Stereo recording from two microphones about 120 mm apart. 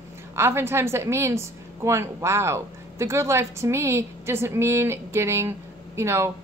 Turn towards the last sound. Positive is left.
turn(degrees=-25)  # may be behind; listen again after turning